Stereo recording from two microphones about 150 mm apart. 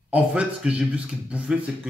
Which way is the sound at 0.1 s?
10° right (ahead or behind).